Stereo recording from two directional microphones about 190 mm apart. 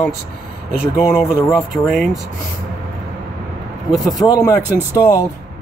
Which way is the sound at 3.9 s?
Centre (ahead or behind).